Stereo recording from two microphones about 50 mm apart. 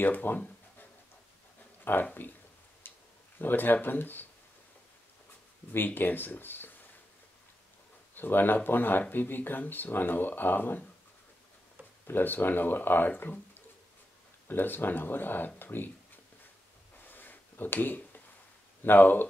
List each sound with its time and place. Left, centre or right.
0.0 s speech: left
1.9 s speech: left
2.8 s tick-tock: left
3.3 s speech: left
5.7 s speech: left
8.1 s speech: left
12.1 s speech: left
17.0 s a sound: left
18.8 s speech: left